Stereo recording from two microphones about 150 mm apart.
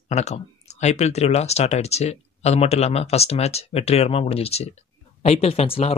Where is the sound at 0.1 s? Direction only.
50° left (ahead or behind).